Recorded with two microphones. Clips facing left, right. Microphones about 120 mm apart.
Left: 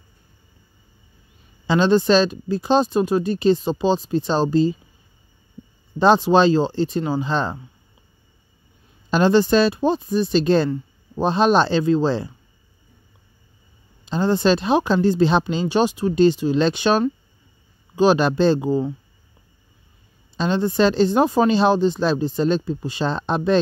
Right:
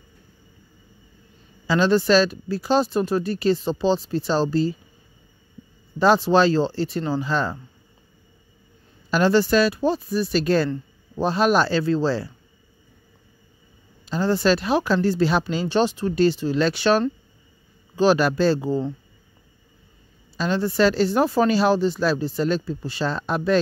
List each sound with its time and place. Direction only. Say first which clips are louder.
1.7 s speech: left 2 dB; 20° left (ahead or behind)
5.9 s speech: left 2 dB; 20° left (ahead or behind)
9.1 s speech: left 2 dB; 20° left (ahead or behind)
14.0 s speech: left 2 dB; 20° left (ahead or behind)
20.3 s speech: left 2 dB; 20° left (ahead or behind)